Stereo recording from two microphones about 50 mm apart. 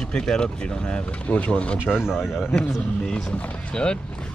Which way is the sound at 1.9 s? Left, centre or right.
Centre.